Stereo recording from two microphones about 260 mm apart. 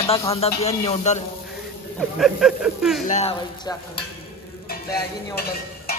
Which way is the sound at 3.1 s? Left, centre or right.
Left.